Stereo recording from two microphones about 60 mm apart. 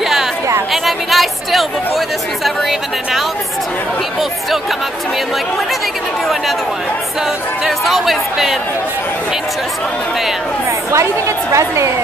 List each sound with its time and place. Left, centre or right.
0.8 s speech: centre
7.6 s speech: centre
10.9 s a woman's voice: right